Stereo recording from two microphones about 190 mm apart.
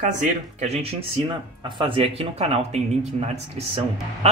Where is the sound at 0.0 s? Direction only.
40° right (ahead or behind).